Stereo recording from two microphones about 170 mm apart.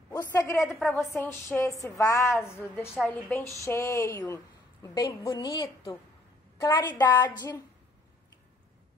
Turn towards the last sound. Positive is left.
turn(degrees=25)  # may be behind; listen again after turning